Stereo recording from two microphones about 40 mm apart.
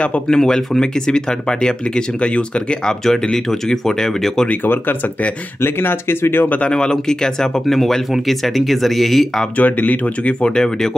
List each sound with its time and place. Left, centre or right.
0.3 s speech: centre
5.6 s speech: left
6.7 s speech: centre
7.6 s speech: centre
9.6 s speech: left
10.4 s speech: centre